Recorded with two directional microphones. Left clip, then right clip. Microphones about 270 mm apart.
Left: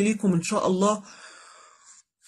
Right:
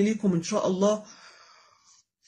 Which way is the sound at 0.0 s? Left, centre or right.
Left.